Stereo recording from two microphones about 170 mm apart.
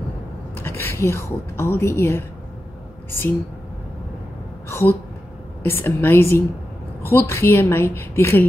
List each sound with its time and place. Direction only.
0.6 s a woman's voice: 15° left (ahead or behind)
4.6 s a sound: 15° left (ahead or behind)
5.6 s a woman's voice: 10° left (ahead or behind)